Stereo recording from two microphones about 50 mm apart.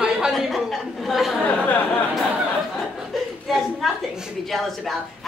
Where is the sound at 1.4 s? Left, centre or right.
Left.